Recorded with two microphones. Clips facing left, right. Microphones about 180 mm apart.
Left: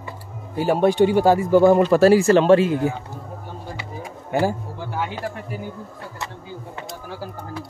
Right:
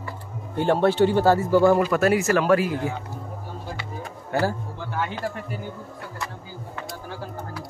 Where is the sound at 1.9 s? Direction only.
30° left (ahead or behind).